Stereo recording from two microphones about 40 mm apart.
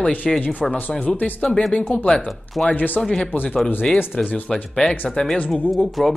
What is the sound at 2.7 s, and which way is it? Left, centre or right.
Speech, left.